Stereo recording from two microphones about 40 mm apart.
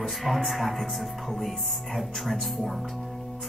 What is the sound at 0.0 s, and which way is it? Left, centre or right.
Speech, centre.